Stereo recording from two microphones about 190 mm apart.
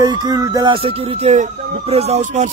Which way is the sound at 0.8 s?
35° right (ahead or behind).